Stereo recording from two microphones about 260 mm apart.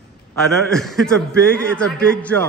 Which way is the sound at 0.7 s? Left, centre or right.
Centre.